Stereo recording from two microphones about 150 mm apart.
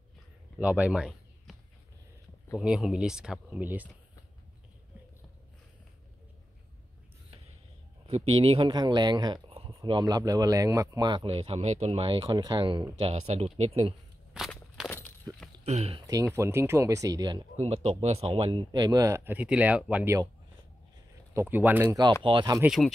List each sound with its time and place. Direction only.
0.6 s a sound: 10° right (ahead or behind)
2.6 s speech: 5° right (ahead or behind)
8.1 s speech: 40° right (ahead or behind)
13.0 s speech: 45° right (ahead or behind)
14.3 s walk: centre (ahead or behind)
14.9 s a sound: 15° left (ahead or behind)
15.6 s speech: 45° right (ahead or behind)
16.3 s speech: 15° right (ahead or behind)
17.6 s speech: 45° right (ahead or behind); by 20.2 s 10° right (ahead or behind)
21.3 s speech: 15° right (ahead or behind)
22.2 s speech: 30° right (ahead or behind)
22.7 s speech: centre (ahead or behind)